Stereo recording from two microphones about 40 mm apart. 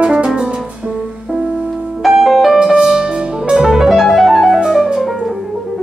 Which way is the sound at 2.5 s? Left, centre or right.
Centre.